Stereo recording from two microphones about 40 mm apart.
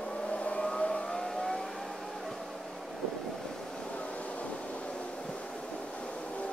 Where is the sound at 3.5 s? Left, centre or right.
Centre.